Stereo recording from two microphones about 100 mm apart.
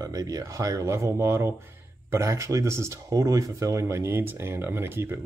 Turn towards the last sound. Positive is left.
turn(degrees=-25)  # may be behind; listen again after turning